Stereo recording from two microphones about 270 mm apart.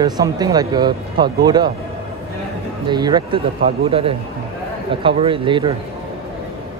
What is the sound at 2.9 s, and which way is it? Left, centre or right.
Speech, centre.